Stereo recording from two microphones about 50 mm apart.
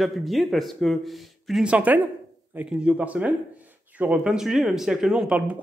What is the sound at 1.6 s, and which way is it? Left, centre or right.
Speech, right.